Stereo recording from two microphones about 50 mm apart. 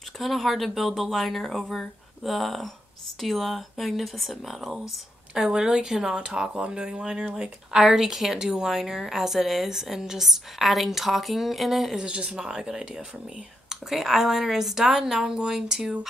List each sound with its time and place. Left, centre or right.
0.2 s speech: centre
5.3 s speech: centre
12.0 s speech: centre